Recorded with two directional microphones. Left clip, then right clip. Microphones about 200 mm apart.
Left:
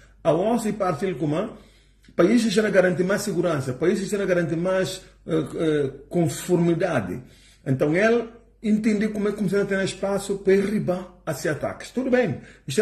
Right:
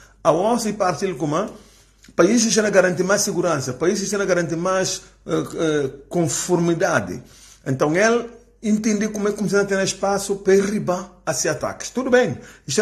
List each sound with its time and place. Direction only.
0.2 s speech: 5° left (ahead or behind)